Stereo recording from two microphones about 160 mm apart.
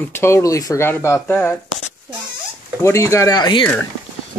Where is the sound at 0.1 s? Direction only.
15° left (ahead or behind).